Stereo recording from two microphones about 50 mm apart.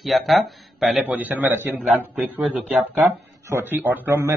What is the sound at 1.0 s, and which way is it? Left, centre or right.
A man's voice, right.